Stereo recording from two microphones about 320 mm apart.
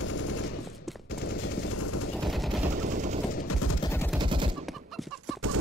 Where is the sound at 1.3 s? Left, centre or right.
Left.